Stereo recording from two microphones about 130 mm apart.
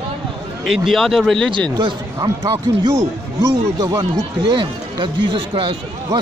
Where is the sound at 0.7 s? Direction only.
Centre (ahead or behind).